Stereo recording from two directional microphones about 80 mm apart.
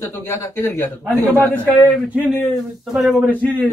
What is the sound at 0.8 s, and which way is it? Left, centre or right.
Speech, left.